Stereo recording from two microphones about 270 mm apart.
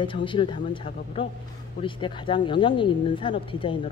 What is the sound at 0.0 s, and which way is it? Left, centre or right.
Speech, centre.